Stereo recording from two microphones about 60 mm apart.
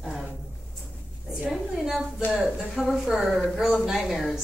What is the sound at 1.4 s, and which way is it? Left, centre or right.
A woman's voice, centre.